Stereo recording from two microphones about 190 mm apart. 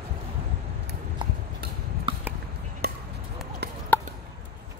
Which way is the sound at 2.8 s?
55° right (ahead or behind).